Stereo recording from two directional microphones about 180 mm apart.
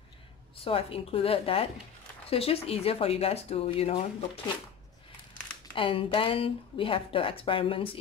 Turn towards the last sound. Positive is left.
turn(degrees=30)  # may be behind; listen again after turning